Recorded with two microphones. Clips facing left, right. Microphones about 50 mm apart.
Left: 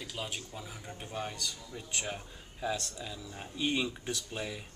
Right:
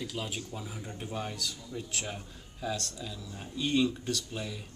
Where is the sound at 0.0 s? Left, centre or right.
Centre.